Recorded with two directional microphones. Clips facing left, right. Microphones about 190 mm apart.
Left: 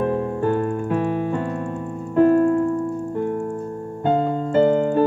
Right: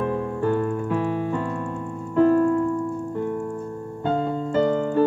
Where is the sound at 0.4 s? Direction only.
55° left (ahead or behind).